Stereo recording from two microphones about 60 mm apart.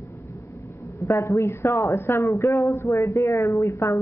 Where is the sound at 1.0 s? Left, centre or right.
Left.